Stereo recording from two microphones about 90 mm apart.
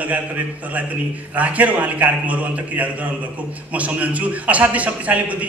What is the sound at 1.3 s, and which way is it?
A man's voice, 15° right (ahead or behind).